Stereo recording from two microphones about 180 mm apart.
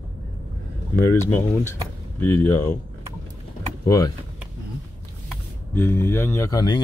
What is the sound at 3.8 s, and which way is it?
Speech, 20° left (ahead or behind).